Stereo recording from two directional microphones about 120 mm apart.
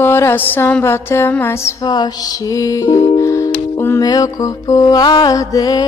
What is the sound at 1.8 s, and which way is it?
Music, 35° left (ahead or behind).